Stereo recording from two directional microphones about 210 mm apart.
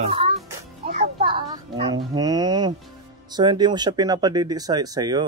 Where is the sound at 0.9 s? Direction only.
25° right (ahead or behind).